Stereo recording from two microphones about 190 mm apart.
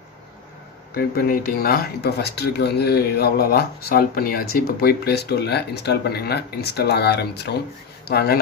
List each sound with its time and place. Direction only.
0.9 s speech: 50° left (ahead or behind)